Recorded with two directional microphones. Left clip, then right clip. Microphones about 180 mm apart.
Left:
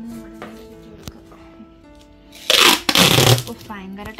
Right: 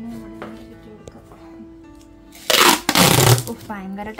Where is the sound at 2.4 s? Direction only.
Centre (ahead or behind).